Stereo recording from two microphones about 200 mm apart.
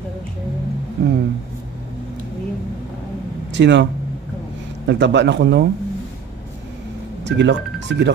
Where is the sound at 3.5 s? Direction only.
60° right (ahead or behind).